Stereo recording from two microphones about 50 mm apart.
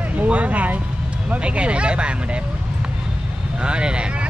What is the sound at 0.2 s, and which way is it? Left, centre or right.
Vehicle, right.